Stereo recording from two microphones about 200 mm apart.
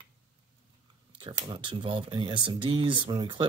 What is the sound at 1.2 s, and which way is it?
Speech, 20° right (ahead or behind).